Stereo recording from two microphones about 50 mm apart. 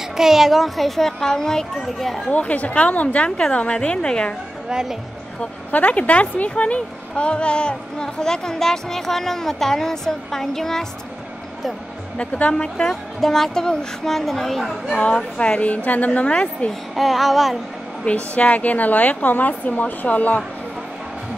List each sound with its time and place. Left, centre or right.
0.2 s a child's voice: centre
2.3 s a woman's voice: left
4.6 s speech: centre
5.7 s a woman's voice: left; by 10.9 s centre
12.2 s a woman's voice: left; by 14.7 s centre
14.9 s a woman's voice: left
16.9 s a child's voice: centre
18.0 s a woman's voice: left